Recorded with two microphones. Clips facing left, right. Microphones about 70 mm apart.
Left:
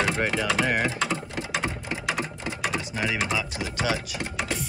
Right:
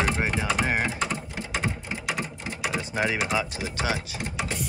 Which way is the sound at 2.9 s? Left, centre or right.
Right.